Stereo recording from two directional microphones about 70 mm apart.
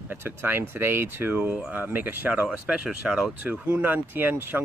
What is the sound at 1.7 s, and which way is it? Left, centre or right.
Speech, right.